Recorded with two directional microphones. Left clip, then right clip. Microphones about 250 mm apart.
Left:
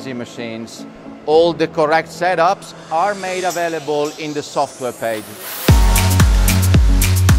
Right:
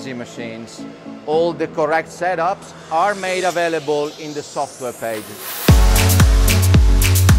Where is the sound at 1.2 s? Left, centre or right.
Left.